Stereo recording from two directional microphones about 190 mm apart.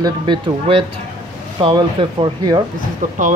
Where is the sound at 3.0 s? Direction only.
40° right (ahead or behind).